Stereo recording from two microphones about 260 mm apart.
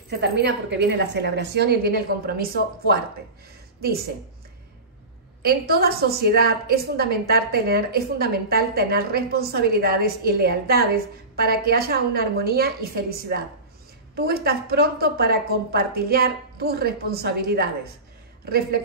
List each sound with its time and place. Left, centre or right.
0.1 s a woman's voice: right
5.4 s a woman's voice: right